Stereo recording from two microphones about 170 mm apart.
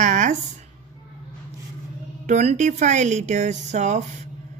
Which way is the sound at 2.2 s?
40° right (ahead or behind).